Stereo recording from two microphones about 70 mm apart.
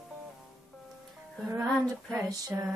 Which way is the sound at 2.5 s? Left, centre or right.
Right.